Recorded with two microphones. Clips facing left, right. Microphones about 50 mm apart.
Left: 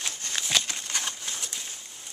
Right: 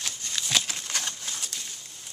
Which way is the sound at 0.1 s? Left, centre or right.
Left.